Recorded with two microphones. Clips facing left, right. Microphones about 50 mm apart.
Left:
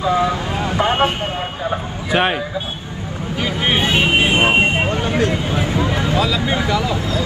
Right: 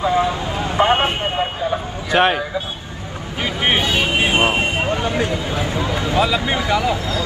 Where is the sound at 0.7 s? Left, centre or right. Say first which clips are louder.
Right 1 dB; right.